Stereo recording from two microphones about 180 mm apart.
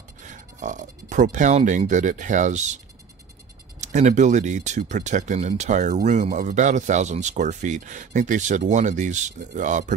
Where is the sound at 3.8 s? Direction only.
40° right (ahead or behind).